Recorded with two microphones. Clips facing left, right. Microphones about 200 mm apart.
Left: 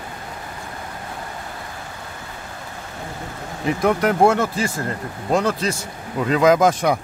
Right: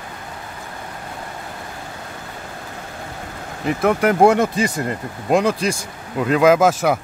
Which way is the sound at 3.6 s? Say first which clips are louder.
Right 1 dB; 5° right (ahead or behind).